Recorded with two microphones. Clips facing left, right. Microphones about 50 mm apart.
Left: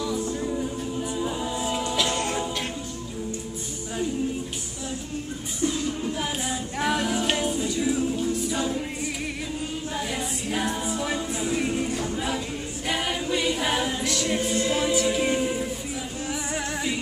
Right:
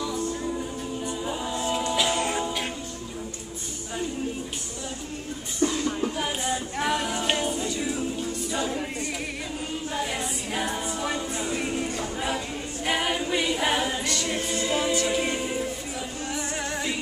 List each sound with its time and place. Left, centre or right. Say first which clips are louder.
0.0 s a capella: left 1 dB; centre
5.6 s music: right 2 dB; right
6.1 s a capella: right 1 dB; centre
12.0 s music: left 1 dB; centre
12.8 s a capella: right 2 dB; centre
16.3 s music: left 1 dB; centre